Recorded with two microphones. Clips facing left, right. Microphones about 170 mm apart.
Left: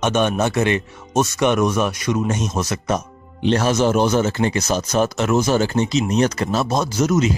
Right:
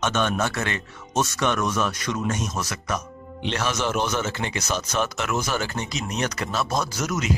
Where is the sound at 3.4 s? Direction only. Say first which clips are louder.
Left 9 dB; 35° left (ahead or behind).